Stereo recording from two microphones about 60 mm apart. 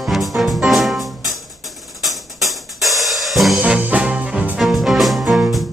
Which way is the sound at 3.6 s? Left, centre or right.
Right.